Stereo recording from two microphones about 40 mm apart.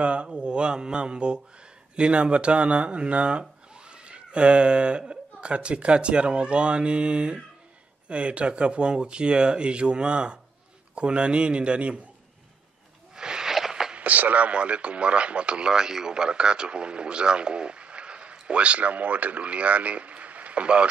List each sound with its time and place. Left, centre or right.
0.0 s mantra: right
0.3 s speech: right
13.1 s a sound: centre
13.9 s speech: right